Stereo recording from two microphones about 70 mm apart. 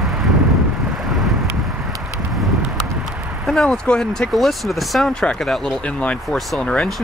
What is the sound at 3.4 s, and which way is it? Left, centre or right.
Speech, centre.